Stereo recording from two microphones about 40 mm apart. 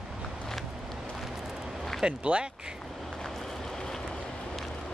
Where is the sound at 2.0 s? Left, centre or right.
Right.